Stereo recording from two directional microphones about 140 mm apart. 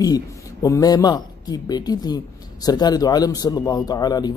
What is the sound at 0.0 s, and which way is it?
Speech, 25° left (ahead or behind).